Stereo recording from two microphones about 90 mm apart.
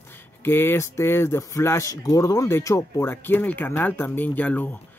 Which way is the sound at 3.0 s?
25° left (ahead or behind).